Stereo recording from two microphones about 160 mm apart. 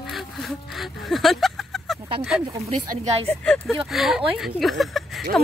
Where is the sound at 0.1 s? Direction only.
Centre (ahead or behind).